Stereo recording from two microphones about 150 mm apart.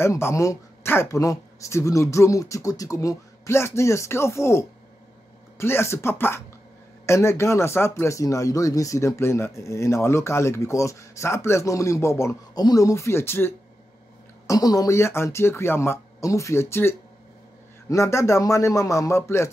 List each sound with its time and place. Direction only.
0.0 s speech: 20° left (ahead or behind)
14.5 s speech: 25° left (ahead or behind)